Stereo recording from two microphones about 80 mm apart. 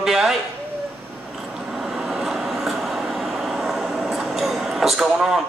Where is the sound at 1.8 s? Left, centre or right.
Centre.